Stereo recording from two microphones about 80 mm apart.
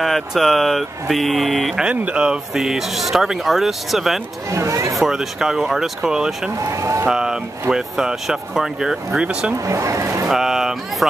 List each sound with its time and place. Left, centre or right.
0.0 s speech: centre
1.8 s speech: centre
4.5 s speech: right
4.9 s speech: centre
6.6 s speech: right
7.1 s speech: centre
9.7 s speech: right
10.2 s a sound: centre